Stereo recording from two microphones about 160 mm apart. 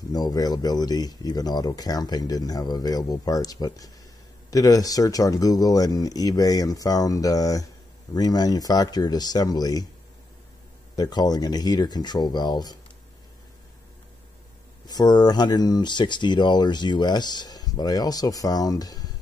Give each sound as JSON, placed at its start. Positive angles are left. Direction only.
{"t": 0.1, "sound": "speech", "side_deg": 25}
{"t": 11.0, "sound": "speech", "side_deg": 25}
{"t": 14.9, "sound": "speech", "side_deg": 25}